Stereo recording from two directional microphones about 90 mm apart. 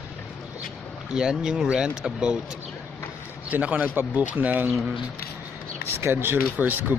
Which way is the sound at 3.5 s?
15° right (ahead or behind).